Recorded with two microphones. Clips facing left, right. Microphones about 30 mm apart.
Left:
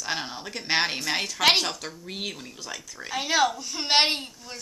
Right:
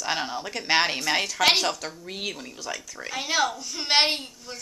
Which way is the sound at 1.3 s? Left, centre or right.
Centre.